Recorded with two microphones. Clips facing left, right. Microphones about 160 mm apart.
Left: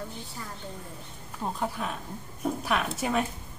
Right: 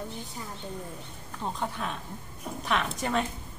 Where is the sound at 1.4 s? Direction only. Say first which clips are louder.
Left 1 dB; 5° left (ahead or behind).